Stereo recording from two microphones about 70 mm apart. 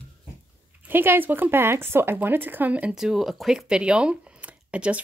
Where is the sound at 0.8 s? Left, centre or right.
Right.